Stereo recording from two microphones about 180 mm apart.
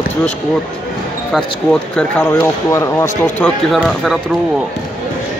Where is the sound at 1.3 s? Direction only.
5° left (ahead or behind).